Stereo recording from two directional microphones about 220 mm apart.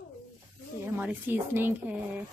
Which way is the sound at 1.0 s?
10° right (ahead or behind).